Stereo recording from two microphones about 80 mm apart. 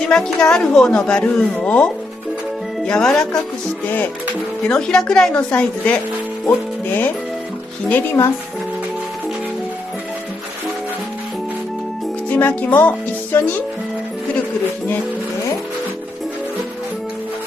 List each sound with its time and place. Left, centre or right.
0.1 s a woman's voice: centre
2.9 s a woman's voice: centre
4.6 s a woman's voice: centre
7.9 s speech: left
12.3 s speech: left